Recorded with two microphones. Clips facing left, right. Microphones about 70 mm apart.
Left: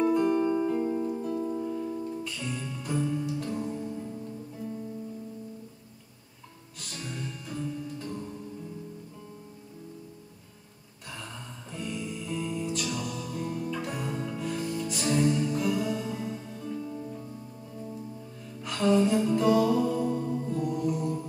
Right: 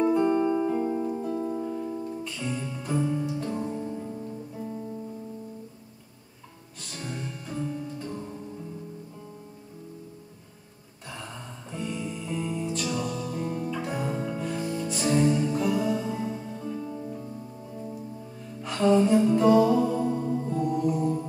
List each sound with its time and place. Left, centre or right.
0.0 s music: centre
3.5 s music: right
7.1 s music: centre
8.1 s music: centre
11.7 s music: centre
14.0 s music: centre
14.4 s music: centre
18.6 s music: centre
20.6 s music: centre